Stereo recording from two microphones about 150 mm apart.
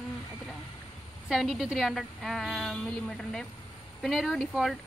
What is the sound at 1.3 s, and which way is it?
Speech, centre (ahead or behind).